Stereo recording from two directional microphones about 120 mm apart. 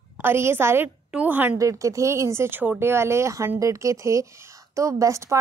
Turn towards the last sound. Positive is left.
turn(degrees=-25)  # may be behind; listen again after turning